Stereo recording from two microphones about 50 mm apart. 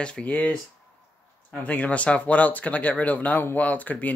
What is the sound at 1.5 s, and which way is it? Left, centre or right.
Speech, left.